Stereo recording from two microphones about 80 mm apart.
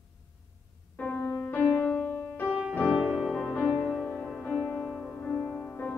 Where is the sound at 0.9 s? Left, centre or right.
Left.